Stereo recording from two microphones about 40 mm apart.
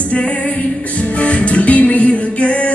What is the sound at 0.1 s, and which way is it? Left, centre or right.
Music, left.